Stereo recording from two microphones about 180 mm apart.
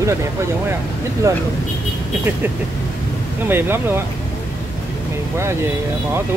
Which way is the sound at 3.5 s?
10° right (ahead or behind).